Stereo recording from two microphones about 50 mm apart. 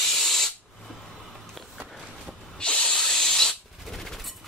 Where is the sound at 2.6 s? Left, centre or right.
Centre.